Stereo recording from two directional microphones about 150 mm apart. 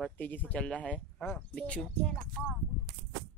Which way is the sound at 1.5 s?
10° left (ahead or behind).